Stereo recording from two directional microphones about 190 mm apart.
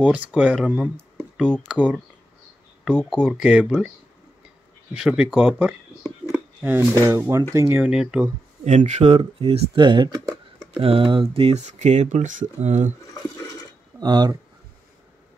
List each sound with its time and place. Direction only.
0.0 s speech: 5° right (ahead or behind)
4.9 s speech: 5° right (ahead or behind)
6.0 s a sound: 10° right (ahead or behind)
7.1 s speech: 15° right (ahead or behind)
8.6 s speech: 40° right (ahead or behind)
13.9 s speech: 20° right (ahead or behind)